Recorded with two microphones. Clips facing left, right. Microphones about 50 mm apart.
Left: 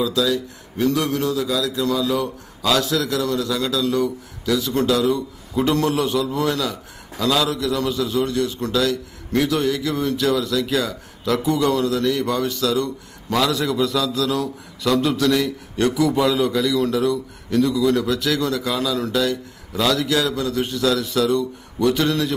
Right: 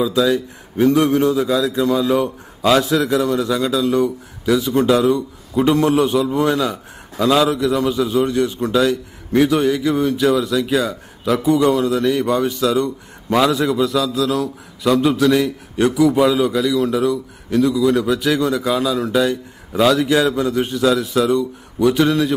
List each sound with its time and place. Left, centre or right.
0.0 s a man's voice: centre
13.7 s a man's voice: centre